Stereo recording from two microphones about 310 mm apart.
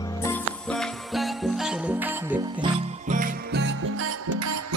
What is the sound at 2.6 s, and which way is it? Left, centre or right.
Music, right.